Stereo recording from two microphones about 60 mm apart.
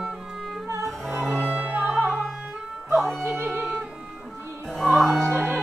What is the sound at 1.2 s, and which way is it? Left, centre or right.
Music, right.